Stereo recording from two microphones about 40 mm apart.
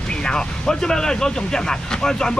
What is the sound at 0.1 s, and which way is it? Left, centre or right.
Speech, left.